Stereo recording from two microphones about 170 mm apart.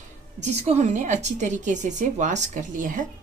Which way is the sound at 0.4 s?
40° right (ahead or behind).